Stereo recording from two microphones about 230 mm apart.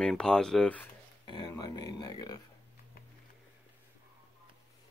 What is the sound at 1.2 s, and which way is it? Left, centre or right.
Speech, centre.